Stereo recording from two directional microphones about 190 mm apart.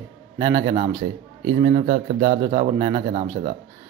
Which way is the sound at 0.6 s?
25° right (ahead or behind).